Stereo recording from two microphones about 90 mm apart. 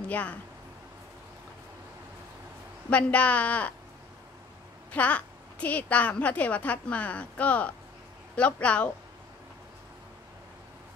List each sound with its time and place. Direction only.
0.1 s speech: 15° left (ahead or behind)
2.9 s speech: 15° left (ahead or behind)
4.9 s speech: 15° left (ahead or behind)